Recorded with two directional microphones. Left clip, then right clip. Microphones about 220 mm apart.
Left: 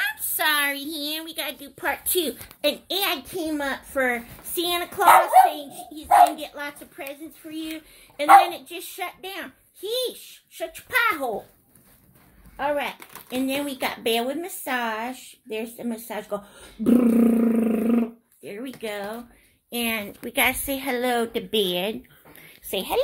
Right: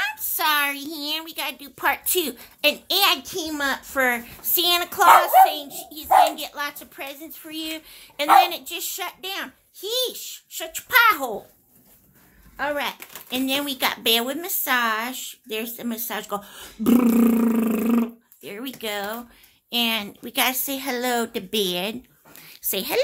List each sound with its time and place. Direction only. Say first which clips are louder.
0.0 s a woman's voice: even; 5° right (ahead or behind)
12.5 s a woman's voice: even; 5° right (ahead or behind)
22.4 s a sound: even; 20° right (ahead or behind)